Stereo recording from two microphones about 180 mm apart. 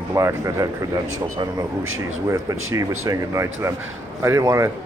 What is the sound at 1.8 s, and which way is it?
Speech, 90° right.